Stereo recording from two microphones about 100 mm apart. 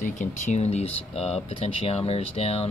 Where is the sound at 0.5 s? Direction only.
90° left.